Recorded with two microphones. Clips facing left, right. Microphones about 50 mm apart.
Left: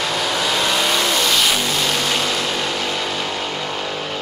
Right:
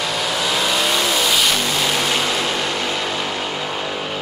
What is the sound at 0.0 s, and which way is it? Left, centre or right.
Vehicle, centre.